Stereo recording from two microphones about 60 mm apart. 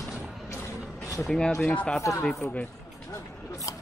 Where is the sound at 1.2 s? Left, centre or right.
Centre.